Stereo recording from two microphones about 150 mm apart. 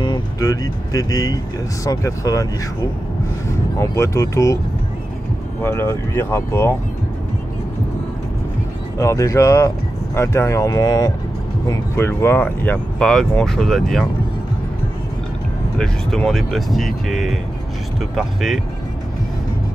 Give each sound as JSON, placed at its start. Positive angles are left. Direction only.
{"t": 0.0, "sound": "speech", "side_deg": 25}
{"t": 3.7, "sound": "speech", "side_deg": 20}
{"t": 5.6, "sound": "speech", "side_deg": 15}
{"t": 8.9, "sound": "speech", "side_deg": 20}
{"t": 15.8, "sound": "speech", "side_deg": 5}